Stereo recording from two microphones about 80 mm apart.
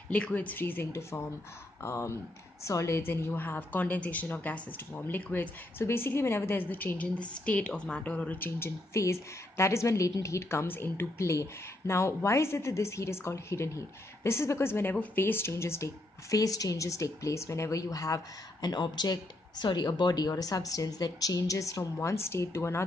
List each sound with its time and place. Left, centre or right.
0.1 s a woman's voice: centre; by 3.0 s left
3.0 s a woman's voice: left
8.5 s a woman's voice: left